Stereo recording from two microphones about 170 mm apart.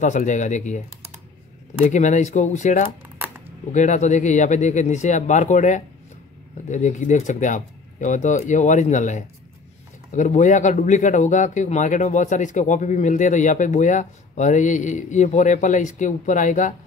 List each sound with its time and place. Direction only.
0.0 s speech: 45° left (ahead or behind)
1.9 s speech: 45° left (ahead or behind)